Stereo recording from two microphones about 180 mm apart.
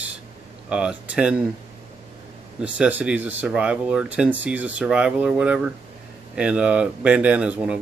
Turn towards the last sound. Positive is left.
turn(degrees=-5)  # may be behind; listen again after turning